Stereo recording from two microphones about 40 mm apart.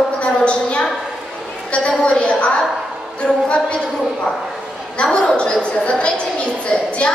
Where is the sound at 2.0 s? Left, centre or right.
Left.